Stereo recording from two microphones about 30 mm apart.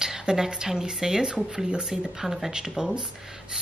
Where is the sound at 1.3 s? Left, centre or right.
Right.